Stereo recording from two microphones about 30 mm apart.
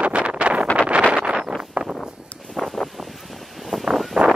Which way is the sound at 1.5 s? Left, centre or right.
Left.